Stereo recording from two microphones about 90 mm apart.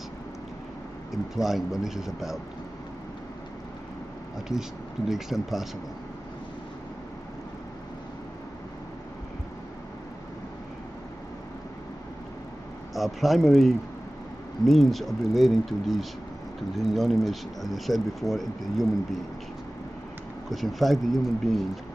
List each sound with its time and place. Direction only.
1.1 s speech: 5° right (ahead or behind)
4.5 s speech: 5° right (ahead or behind)
12.9 s speech: centre (ahead or behind)
20.4 s speech: centre (ahead or behind)